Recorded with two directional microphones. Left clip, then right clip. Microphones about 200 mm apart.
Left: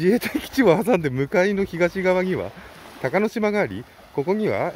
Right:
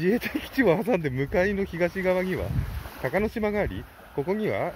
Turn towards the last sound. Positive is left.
turn(degrees=35)  # may be behind; listen again after turning